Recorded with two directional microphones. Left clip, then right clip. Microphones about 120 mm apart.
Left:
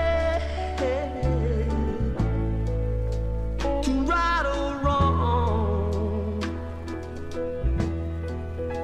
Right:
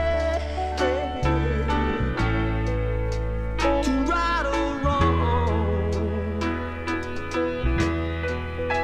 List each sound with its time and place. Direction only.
0.0 s music: 20° right (ahead or behind)
3.6 s music: 20° right (ahead or behind)
6.9 s music: 20° right (ahead or behind)